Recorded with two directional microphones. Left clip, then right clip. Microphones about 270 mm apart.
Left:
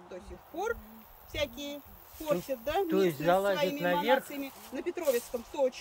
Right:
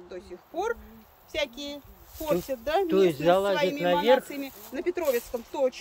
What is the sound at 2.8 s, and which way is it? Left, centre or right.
Speech, right.